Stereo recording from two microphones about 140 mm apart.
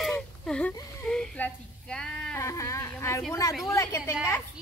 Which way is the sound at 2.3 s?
20° left (ahead or behind).